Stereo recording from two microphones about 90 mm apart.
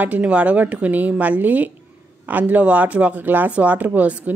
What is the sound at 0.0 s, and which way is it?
A woman's voice, 15° right (ahead or behind).